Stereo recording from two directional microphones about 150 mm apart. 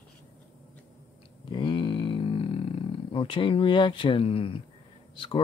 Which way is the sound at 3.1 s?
35° left (ahead or behind).